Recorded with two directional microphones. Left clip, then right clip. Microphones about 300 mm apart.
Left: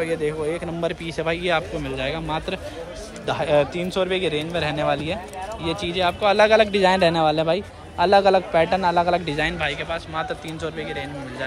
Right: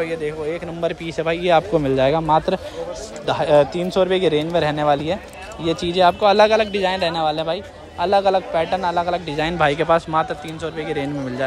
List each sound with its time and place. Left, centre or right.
0.0 s a man's voice: centre
5.0 s speech: right
5.9 s a man's voice: centre
7.2 s speech: centre
7.5 s a man's voice: centre